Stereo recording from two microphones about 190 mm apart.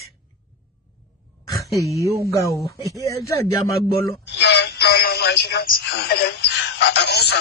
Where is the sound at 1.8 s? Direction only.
15° right (ahead or behind).